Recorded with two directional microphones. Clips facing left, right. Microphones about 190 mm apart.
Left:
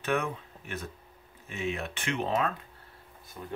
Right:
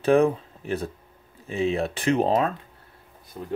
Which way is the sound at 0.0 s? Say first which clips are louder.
Right 12 dB; 30° right (ahead or behind).